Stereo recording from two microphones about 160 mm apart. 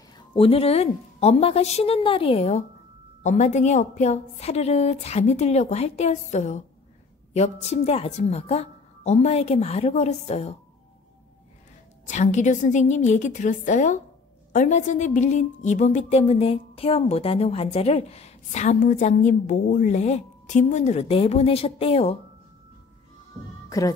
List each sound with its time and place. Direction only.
0.3 s a woman's voice: 35° left (ahead or behind)
12.1 s a woman's voice: 45° left (ahead or behind)